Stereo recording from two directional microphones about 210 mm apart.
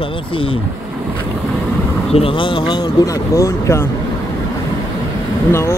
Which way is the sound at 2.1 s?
25° left (ahead or behind).